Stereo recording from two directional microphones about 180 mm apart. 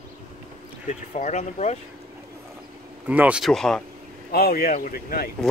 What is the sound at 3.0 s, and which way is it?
Speech, 10° right (ahead or behind).